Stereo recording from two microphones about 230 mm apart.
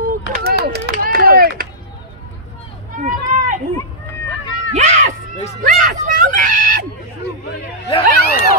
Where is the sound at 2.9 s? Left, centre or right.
Right.